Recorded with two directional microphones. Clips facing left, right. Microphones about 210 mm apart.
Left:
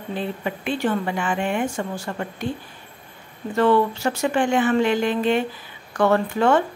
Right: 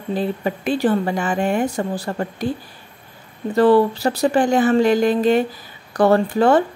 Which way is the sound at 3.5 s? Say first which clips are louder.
Right 4 dB; 35° right (ahead or behind).